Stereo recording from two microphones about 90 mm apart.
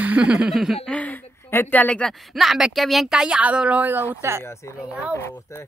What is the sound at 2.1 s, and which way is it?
Speech, centre (ahead or behind).